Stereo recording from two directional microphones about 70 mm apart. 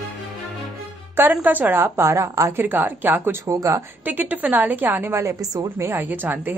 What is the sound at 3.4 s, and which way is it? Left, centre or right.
Speech, right.